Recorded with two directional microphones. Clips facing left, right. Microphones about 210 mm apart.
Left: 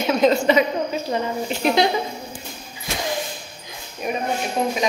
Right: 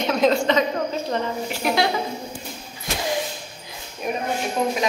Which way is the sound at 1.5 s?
20° left (ahead or behind).